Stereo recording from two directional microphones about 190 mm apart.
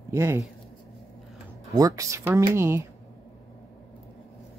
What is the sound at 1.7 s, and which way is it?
Speech, 15° right (ahead or behind).